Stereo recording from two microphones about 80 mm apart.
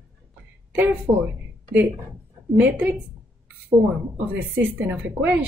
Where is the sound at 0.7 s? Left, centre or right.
Right.